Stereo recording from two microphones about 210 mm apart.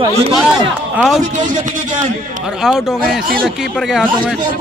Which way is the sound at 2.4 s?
Centre (ahead or behind).